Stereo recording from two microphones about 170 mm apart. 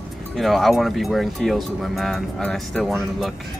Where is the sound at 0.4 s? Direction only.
Centre (ahead or behind).